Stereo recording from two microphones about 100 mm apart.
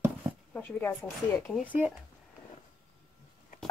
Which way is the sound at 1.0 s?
5° left (ahead or behind).